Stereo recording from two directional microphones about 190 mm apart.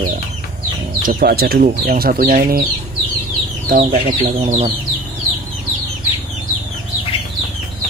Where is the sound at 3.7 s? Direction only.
50° right (ahead or behind).